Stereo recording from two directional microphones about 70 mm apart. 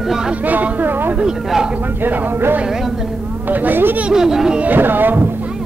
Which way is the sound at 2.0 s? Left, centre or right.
Right.